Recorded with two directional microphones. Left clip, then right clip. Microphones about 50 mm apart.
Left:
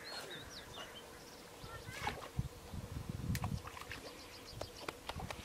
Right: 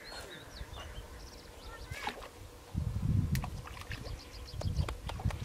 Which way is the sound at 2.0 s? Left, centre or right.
Centre.